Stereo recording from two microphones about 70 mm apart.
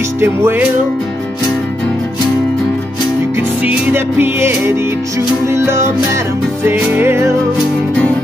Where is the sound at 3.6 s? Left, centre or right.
Right.